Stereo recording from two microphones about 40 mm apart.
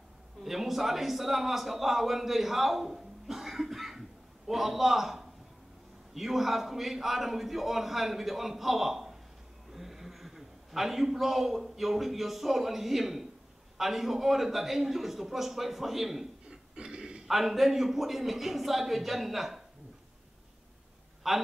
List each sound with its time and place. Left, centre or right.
0.4 s a man's voice: centre
16.4 s a sound: right
17.3 s a man's voice: centre
21.2 s a man's voice: centre